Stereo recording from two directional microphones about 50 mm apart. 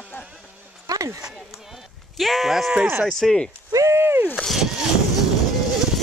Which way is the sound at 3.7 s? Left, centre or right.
Right.